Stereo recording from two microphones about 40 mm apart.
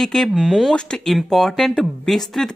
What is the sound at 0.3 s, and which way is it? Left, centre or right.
Speech, centre.